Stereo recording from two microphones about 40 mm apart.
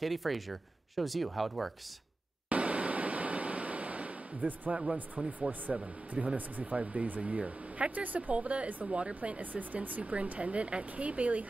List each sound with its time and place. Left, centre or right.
0.0 s speech: centre
2.5 s a sound: right
5.2 s speech: right
5.5 s speech: right